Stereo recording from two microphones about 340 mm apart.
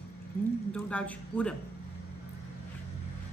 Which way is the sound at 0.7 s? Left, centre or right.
Centre.